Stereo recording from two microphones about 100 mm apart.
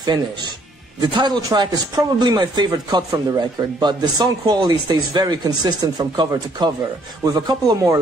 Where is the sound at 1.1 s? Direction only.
45° right (ahead or behind).